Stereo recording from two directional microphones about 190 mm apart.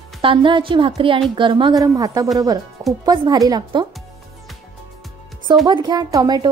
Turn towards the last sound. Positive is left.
turn(degrees=-20)  # may be behind; listen again after turning